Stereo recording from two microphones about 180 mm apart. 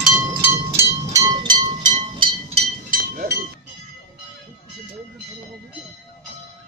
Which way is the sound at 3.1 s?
55° right (ahead or behind).